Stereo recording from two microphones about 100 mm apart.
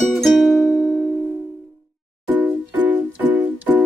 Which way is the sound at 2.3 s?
15° right (ahead or behind).